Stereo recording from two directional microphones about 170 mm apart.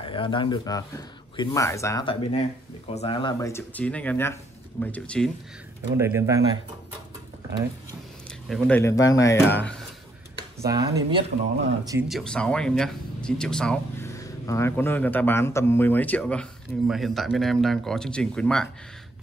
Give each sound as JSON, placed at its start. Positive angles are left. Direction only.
{"t": 0.0, "sound": "speech", "side_deg": 30}
{"t": 2.9, "sound": "speech", "side_deg": 35}
{"t": 3.3, "sound": "speech", "side_deg": 15}
{"t": 5.9, "sound": "speech", "side_deg": -15}
{"t": 8.5, "sound": "speech", "side_deg": 5}
{"t": 9.5, "sound": "speech", "side_deg": 10}
{"t": 10.6, "sound": "speech", "side_deg": -20}
{"t": 12.0, "sound": "speech", "side_deg": 0}
{"t": 14.0, "sound": "speech", "side_deg": 20}